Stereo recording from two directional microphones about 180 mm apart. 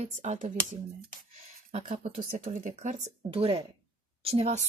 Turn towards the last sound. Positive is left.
turn(degrees=-35)  # may be behind; listen again after turning